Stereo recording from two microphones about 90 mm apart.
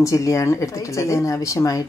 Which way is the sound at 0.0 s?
35° left (ahead or behind).